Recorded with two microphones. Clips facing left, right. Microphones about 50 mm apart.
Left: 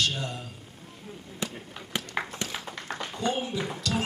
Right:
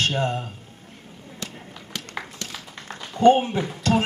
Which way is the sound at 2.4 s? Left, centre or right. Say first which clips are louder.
Left 1 dB; left.